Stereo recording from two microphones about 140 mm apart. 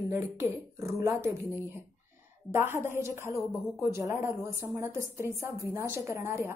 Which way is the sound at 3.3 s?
Centre (ahead or behind).